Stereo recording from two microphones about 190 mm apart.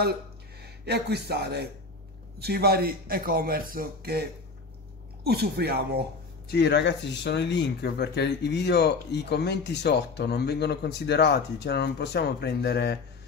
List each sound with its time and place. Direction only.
0.8 s a man's voice: 60° right (ahead or behind)
6.5 s speech: 60° left (ahead or behind)